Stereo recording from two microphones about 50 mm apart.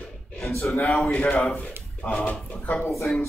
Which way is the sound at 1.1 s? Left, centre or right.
Left.